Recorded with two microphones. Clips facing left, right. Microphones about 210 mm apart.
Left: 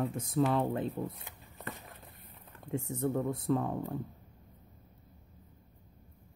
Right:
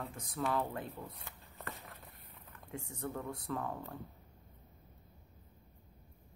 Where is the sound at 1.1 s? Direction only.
15° left (ahead or behind).